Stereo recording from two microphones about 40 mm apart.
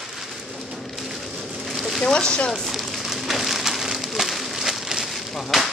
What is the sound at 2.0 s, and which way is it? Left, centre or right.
Speech, left.